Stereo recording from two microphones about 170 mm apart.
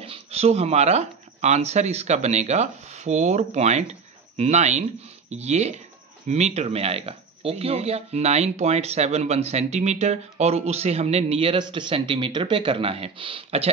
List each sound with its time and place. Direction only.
0.0 s speech: 35° right (ahead or behind)